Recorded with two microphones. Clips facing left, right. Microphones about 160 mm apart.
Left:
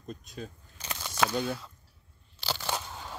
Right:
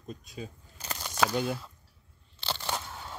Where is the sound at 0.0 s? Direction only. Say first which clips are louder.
Even; 5° right (ahead or behind).